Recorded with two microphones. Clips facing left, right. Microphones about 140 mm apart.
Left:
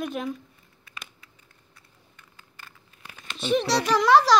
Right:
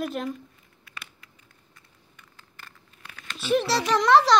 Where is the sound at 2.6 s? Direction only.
10° left (ahead or behind).